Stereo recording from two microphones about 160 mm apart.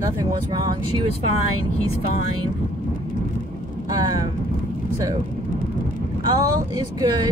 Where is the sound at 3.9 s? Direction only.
25° right (ahead or behind).